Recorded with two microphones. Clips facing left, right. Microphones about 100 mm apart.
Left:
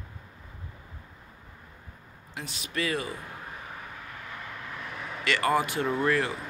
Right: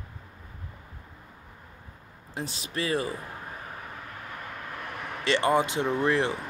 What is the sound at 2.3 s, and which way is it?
Speech, 35° right (ahead or behind).